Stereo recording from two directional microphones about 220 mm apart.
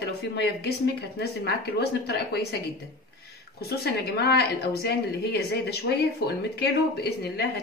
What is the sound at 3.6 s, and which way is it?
A woman's voice, 45° left (ahead or behind).